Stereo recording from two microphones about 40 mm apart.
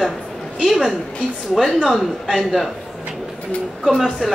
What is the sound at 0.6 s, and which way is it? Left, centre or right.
A man's voice, centre.